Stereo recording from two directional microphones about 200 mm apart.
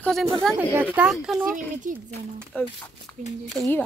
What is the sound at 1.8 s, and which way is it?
Speech, 40° right (ahead or behind).